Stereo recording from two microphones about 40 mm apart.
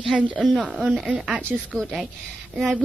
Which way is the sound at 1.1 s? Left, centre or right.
Right.